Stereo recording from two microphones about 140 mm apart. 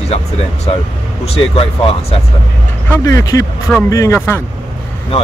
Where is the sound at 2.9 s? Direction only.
20° left (ahead or behind).